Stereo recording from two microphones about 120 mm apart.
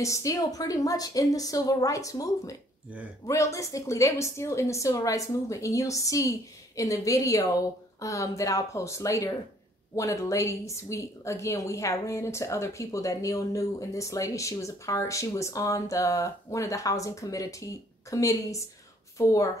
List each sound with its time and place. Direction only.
0.0 s speech: 25° left (ahead or behind)